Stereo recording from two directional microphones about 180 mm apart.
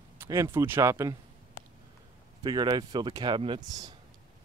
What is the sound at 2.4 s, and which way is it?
Speech, 25° right (ahead or behind).